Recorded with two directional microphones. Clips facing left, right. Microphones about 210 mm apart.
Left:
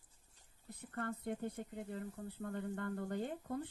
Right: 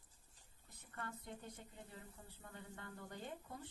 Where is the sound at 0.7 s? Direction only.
60° left (ahead or behind).